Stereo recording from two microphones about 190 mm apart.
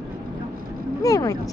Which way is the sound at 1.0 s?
20° left (ahead or behind).